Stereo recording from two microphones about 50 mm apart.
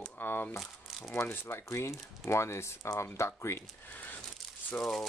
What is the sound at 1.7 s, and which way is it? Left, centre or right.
Speech, left.